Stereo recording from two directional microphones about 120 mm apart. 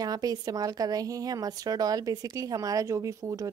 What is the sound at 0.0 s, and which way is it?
A woman's voice, 30° right (ahead or behind).